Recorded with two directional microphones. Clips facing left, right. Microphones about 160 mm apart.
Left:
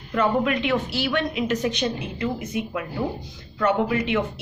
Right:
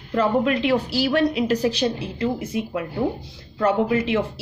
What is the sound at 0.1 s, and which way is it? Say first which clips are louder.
A woman's voice: right 2 dB; 30° right (ahead or behind).